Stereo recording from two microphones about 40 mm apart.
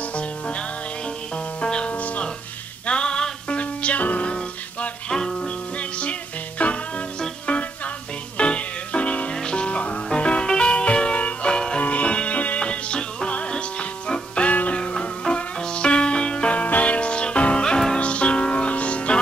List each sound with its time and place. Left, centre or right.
0.1 s music: left
2.9 s music: left
5.1 s music: centre
5.8 s music: left
9.3 s music: left
10.0 s music: left
11.8 s music: left
12.5 s music: left
14.5 s music: left
14.8 s music: left